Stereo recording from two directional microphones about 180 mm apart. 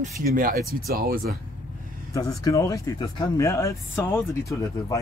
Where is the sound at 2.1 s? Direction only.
20° left (ahead or behind).